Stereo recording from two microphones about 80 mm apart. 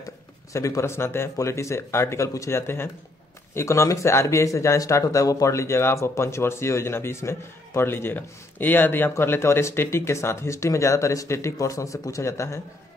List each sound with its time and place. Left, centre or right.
0.5 s speech: left